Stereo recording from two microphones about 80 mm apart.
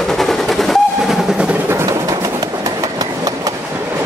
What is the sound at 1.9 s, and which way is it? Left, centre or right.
Train, right.